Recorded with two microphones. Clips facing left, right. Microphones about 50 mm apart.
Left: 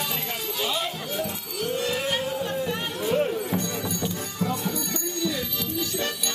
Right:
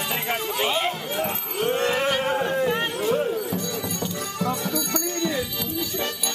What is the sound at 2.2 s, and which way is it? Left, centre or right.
Music, right.